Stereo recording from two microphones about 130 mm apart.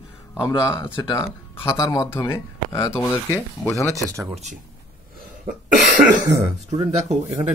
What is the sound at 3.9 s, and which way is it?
Speech, 20° right (ahead or behind).